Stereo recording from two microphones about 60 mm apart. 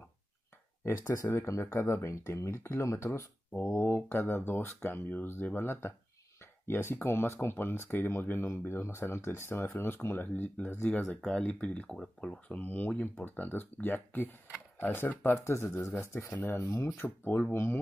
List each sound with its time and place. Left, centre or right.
1.2 s speech: left
3.7 s speech: left
16.0 s speech: left